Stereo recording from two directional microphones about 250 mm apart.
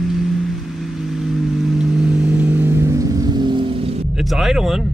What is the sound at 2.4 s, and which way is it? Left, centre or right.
Vehicle, centre.